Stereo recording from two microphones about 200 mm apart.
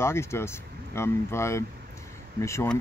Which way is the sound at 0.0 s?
15° left (ahead or behind).